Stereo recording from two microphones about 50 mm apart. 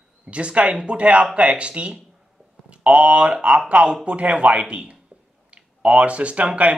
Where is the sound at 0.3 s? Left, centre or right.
Right.